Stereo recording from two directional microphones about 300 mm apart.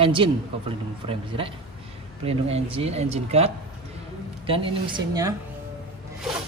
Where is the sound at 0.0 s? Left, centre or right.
Centre.